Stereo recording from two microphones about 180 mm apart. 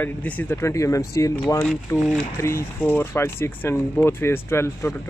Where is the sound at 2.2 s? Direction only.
15° left (ahead or behind).